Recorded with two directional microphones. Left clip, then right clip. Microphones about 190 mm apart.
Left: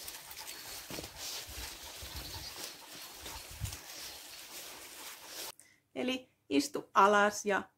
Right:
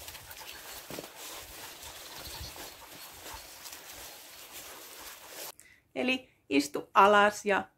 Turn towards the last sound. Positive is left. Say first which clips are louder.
# right 4 dB
turn(degrees=-5)  # may be behind; listen again after turning